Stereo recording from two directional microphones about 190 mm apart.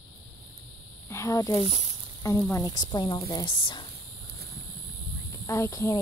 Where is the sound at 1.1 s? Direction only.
15° left (ahead or behind).